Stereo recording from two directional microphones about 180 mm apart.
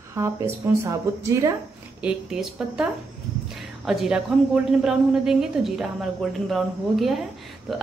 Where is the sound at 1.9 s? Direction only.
5° right (ahead or behind).